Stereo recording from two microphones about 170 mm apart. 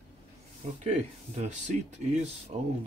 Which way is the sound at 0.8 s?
40° right (ahead or behind).